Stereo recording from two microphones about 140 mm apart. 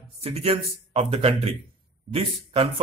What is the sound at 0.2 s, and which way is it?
A man's voice, 45° right (ahead or behind).